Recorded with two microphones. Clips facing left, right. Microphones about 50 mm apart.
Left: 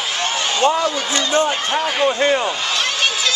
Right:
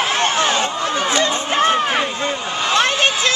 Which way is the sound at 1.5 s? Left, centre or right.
Right.